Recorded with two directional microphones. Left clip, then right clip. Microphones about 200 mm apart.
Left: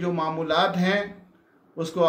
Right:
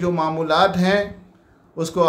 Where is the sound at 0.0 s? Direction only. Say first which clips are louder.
Right 5 dB; 20° right (ahead or behind).